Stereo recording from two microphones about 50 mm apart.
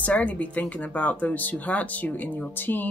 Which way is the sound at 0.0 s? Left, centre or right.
Left.